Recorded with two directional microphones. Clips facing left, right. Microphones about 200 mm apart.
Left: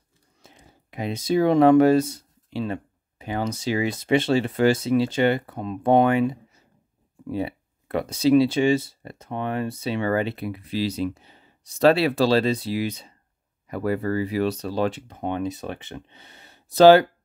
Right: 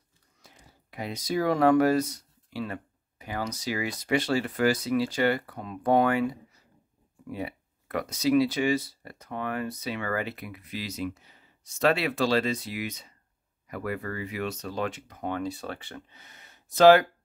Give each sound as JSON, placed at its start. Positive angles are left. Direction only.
{"t": 0.4, "sound": "speech", "side_deg": 25}